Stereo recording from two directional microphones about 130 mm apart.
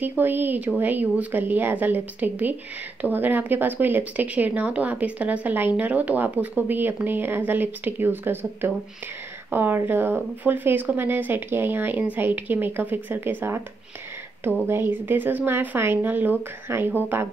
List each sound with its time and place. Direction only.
0.0 s speech: 15° right (ahead or behind)